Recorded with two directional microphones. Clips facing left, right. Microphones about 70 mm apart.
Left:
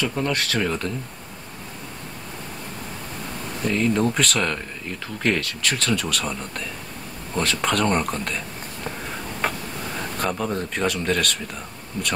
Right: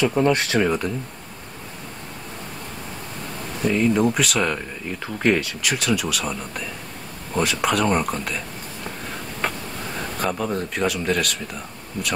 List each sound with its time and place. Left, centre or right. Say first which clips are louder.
0.0 s speech: right 5 dB; right
3.6 s speech: right 2 dB; centre
9.4 s a sound: left 1 dB; centre
10.1 s speech: right 1 dB; centre